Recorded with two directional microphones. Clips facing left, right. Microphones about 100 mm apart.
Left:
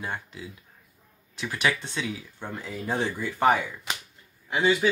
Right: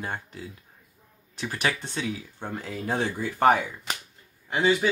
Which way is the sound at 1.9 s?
35° right (ahead or behind).